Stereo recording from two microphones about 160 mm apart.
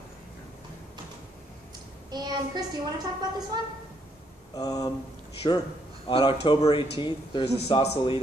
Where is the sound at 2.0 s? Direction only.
25° right (ahead or behind).